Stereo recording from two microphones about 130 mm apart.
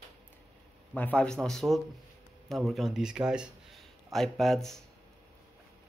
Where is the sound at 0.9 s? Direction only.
10° left (ahead or behind).